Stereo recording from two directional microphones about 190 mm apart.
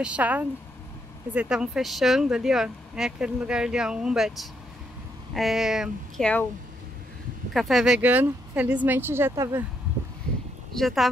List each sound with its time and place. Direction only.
0.0 s speech: 5° right (ahead or behind)
7.5 s speech: centre (ahead or behind)
10.7 s speech: centre (ahead or behind)